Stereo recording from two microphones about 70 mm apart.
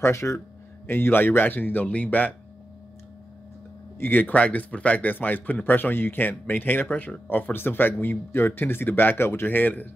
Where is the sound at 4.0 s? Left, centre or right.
Left.